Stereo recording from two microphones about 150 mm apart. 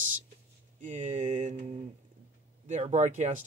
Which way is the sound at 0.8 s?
55° right (ahead or behind).